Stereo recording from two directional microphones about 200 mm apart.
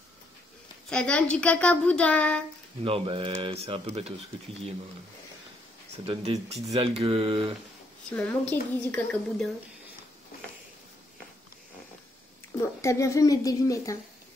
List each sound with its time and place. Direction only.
0.8 s speech: 5° left (ahead or behind)
2.8 s speech: 25° right (ahead or behind)
6.0 s speech: 30° right (ahead or behind)
8.2 s a woman's voice: 5° left (ahead or behind)
12.8 s a woman's voice: 15° left (ahead or behind)